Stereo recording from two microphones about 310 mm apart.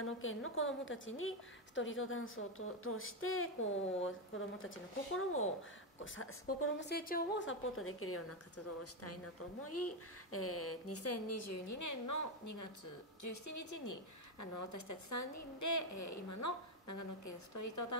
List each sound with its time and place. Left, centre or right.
0.0 s a woman's voice: left